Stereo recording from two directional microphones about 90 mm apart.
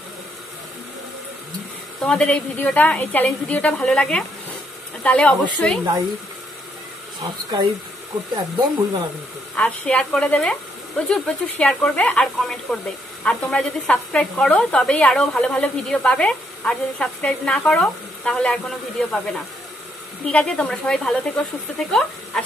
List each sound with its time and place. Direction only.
2.0 s speech: 15° left (ahead or behind)
8.4 s speech: 50° right (ahead or behind)
9.6 s speech: 15° left (ahead or behind)
12.4 s speech: 5° left (ahead or behind)